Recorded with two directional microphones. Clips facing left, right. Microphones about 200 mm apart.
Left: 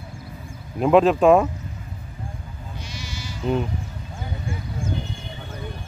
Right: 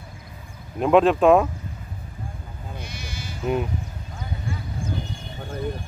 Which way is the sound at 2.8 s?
55° right (ahead or behind).